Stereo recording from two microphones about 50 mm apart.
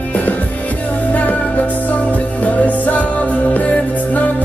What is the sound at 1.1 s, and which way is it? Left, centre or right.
Music, left.